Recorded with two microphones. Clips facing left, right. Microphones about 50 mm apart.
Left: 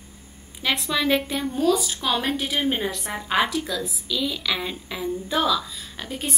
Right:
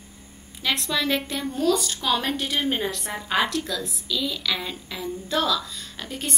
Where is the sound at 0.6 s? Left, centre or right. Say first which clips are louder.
Left 1 dB; centre.